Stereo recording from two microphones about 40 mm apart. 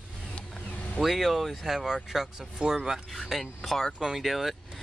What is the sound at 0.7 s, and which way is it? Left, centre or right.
Vehicle, left.